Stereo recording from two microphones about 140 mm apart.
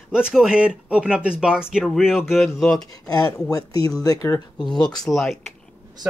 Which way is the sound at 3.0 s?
25° left (ahead or behind).